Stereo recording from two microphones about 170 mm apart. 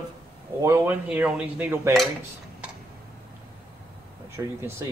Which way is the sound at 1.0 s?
5° right (ahead or behind).